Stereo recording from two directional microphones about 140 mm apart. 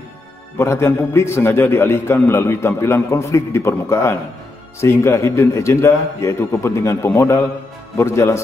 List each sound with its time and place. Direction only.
0.6 s a man's voice: 20° left (ahead or behind)